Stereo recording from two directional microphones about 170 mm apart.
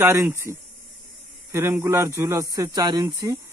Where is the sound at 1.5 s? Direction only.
15° right (ahead or behind).